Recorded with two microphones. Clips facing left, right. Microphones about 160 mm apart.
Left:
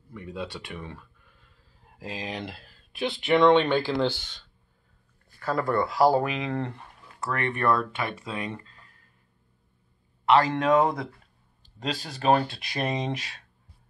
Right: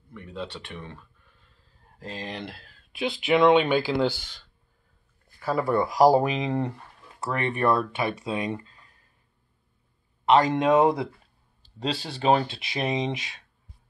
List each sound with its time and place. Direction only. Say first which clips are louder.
0.1 s speech: left 1 dB; 10° left (ahead or behind)
2.0 s speech: left 1 dB; 10° left (ahead or behind); by 8.7 s 20° right (ahead or behind)
10.3 s speech: right 1 dB; 20° right (ahead or behind)
11.8 s speech: right 2 dB; 30° right (ahead or behind)